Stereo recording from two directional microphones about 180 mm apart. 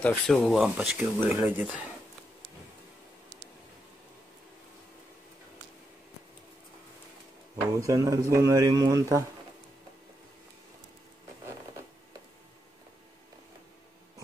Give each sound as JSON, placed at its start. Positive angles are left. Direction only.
{"t": 0.0, "sound": "speech", "side_deg": 5}
{"t": 7.8, "sound": "speech", "side_deg": -15}